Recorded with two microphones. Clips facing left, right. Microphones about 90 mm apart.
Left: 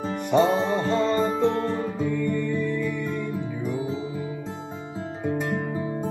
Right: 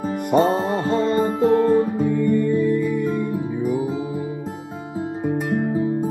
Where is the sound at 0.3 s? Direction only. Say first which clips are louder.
Right 2 dB; 40° right (ahead or behind).